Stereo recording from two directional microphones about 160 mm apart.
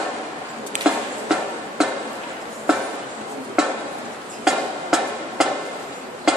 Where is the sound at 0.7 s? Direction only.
45° right (ahead or behind).